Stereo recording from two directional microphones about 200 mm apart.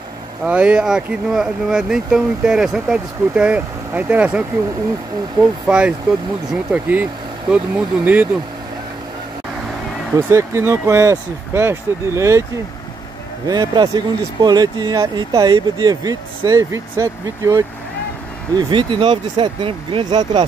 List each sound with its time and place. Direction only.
0.4 s speech: 5° right (ahead or behind)
10.1 s speech: 15° right (ahead or behind)
13.5 s speech: 20° right (ahead or behind)